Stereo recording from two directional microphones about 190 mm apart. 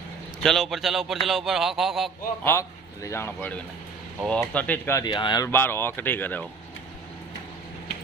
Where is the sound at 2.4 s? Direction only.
15° left (ahead or behind).